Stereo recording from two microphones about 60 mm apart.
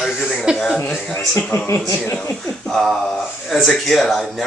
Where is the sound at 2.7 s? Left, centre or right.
Centre.